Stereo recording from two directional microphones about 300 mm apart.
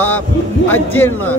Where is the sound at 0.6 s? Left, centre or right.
Centre.